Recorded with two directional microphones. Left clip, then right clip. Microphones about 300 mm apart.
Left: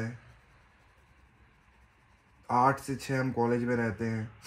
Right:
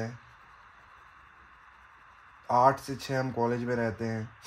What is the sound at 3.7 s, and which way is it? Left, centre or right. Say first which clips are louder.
Speech: right 1 dB; centre.